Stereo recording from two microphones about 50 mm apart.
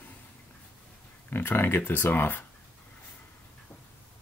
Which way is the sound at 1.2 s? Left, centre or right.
Left.